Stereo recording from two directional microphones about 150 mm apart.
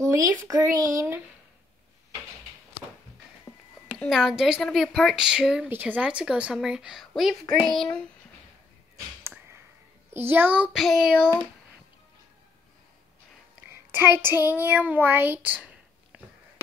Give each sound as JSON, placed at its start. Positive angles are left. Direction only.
{"t": 0.0, "sound": "a child's voice", "side_deg": -20}
{"t": 4.0, "sound": "speech", "side_deg": 0}
{"t": 10.1, "sound": "a child's voice", "side_deg": -15}
{"t": 13.9, "sound": "speech", "side_deg": -15}